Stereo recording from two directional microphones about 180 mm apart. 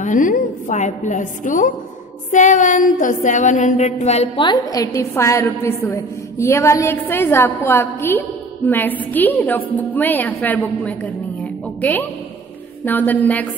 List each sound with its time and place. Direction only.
0.0 s a woman's voice: 45° left (ahead or behind)
2.3 s a sound: 45° left (ahead or behind)
4.5 s a woman's voice: 20° left (ahead or behind)